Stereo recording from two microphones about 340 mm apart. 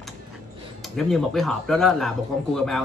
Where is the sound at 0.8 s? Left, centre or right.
Centre.